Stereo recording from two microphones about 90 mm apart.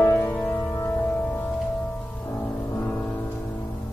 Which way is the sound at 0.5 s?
30° left (ahead or behind).